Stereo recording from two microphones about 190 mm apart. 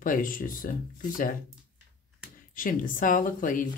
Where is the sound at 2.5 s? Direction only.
45° left (ahead or behind).